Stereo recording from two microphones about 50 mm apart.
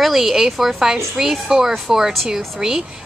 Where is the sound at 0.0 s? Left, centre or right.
Centre.